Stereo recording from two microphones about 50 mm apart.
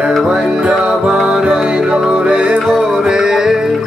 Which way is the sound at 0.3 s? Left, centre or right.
Centre.